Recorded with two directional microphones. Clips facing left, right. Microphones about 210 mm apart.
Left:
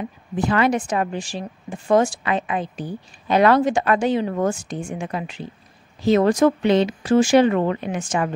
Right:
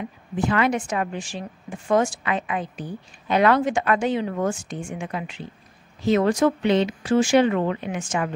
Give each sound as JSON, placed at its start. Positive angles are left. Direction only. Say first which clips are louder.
{"t": 0.4, "sound": "speech", "louder": "left 2 dB", "side_deg": 35}